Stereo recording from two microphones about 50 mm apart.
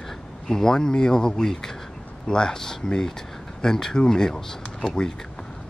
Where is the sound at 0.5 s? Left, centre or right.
Centre.